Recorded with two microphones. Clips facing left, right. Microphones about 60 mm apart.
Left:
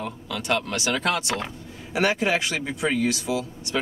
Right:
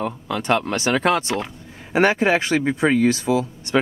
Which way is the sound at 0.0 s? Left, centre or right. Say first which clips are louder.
Right 6 dB; right.